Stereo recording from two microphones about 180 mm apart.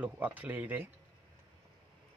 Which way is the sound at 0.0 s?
10° right (ahead or behind).